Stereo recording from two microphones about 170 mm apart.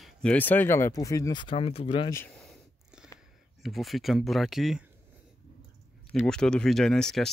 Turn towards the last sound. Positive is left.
turn(degrees=5)  # may be behind; listen again after turning